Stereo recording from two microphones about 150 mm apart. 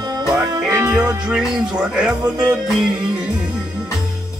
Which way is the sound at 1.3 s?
5° right (ahead or behind).